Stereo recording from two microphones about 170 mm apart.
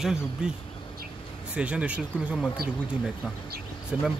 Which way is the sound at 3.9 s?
5° right (ahead or behind).